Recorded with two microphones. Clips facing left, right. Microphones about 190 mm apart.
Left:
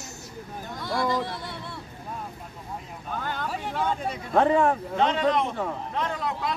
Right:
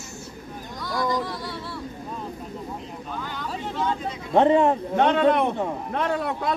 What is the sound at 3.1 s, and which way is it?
Vehicle, 55° left (ahead or behind).